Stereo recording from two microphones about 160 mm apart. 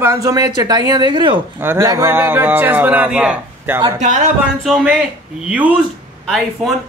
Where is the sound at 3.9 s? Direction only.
50° right (ahead or behind).